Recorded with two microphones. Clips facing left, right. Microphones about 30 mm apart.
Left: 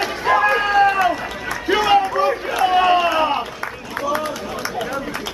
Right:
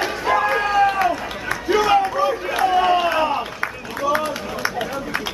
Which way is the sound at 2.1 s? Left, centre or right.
Left.